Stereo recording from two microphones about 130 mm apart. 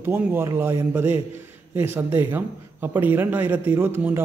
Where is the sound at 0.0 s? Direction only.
15° right (ahead or behind).